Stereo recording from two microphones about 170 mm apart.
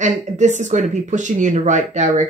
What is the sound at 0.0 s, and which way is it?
Speech, 45° right (ahead or behind).